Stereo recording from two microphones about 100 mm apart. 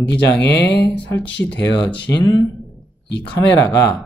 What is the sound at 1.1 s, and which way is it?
Speech, 20° left (ahead or behind).